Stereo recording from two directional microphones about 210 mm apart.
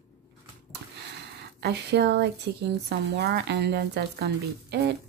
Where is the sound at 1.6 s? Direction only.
50° right (ahead or behind).